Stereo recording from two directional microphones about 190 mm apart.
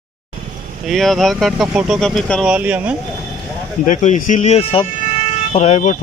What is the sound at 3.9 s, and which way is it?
Speech, 40° left (ahead or behind).